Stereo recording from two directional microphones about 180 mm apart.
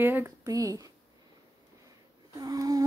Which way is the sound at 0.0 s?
15° right (ahead or behind).